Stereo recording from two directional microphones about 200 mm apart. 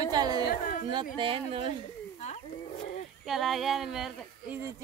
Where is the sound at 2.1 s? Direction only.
35° left (ahead or behind).